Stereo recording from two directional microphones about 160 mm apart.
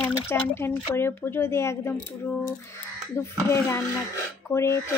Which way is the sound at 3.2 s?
15° left (ahead or behind).